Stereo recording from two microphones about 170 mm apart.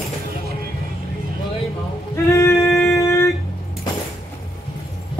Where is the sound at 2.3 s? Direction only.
15° left (ahead or behind).